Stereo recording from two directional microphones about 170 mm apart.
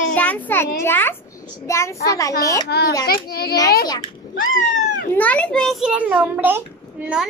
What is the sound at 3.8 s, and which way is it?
Speech, 25° left (ahead or behind).